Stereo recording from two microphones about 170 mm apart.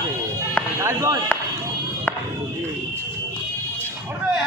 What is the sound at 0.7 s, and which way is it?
Speech, 15° right (ahead or behind).